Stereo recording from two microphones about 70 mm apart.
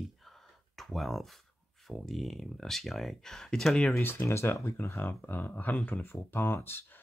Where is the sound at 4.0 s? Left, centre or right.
Left.